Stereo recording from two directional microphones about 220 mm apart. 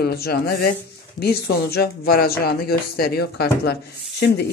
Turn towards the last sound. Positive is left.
turn(degrees=50)  # may be behind; listen again after turning